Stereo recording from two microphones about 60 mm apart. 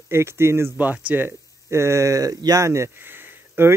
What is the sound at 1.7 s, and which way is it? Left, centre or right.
Speech, right.